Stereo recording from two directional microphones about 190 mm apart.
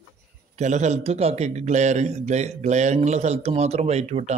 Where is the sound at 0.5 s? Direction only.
35° right (ahead or behind).